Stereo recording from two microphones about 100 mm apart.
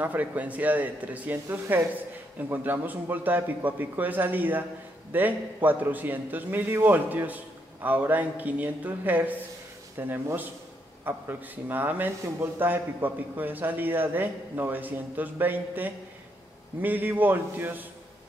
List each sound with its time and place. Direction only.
0.0 s a man's voice: 15° right (ahead or behind)